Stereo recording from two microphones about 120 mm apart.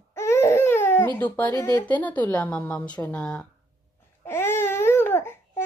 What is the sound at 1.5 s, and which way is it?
Speech, 30° left (ahead or behind).